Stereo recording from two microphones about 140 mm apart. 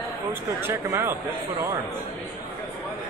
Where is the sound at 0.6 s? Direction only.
15° right (ahead or behind).